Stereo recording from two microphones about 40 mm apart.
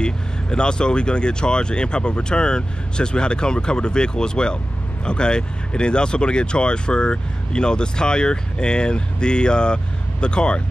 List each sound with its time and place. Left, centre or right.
0.0 s speech: left